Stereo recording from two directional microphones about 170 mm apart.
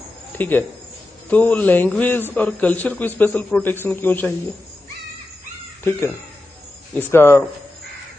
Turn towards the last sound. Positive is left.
turn(degrees=15)  # may be behind; listen again after turning